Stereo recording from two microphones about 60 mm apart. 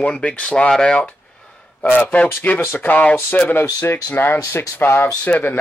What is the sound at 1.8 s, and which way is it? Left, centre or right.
Speech, left.